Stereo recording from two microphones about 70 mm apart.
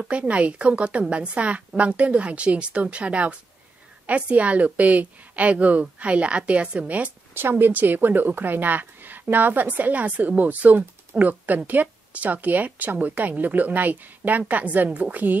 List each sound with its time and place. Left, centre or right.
0.1 s speech: centre
7.3 s speech: right